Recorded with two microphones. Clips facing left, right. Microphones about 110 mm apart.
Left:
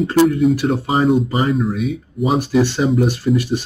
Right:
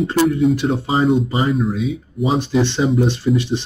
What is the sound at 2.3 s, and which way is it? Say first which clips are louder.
Speech: left 2 dB; 10° left (ahead or behind).